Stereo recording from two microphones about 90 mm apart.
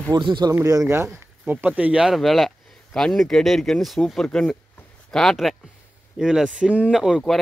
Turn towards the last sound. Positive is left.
turn(degrees=0)  # may be behind; listen again after turning